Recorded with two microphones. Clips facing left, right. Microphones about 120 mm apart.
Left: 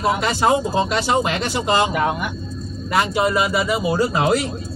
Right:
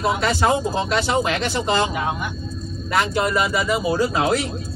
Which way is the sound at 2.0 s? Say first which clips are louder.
Left 4 dB; 60° left (ahead or behind).